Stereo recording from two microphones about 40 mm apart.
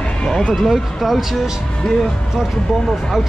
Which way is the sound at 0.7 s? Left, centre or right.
Centre.